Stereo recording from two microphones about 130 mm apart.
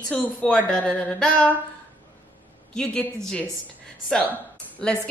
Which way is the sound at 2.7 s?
5° left (ahead or behind).